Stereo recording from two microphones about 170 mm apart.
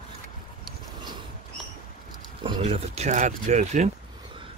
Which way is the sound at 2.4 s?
30° right (ahead or behind).